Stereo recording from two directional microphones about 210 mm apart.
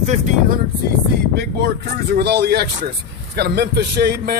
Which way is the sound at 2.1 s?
50° right (ahead or behind).